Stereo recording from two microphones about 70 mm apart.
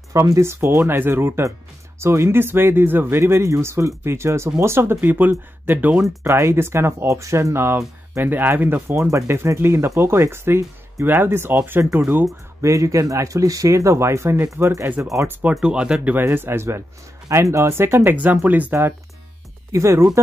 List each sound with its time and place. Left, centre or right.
0.1 s speech: right
6.0 s speech: right
12.6 s speech: right
15.0 s speech: right
15.6 s speech: centre
16.2 s speech: right
18.1 s speech: right
19.7 s speech: right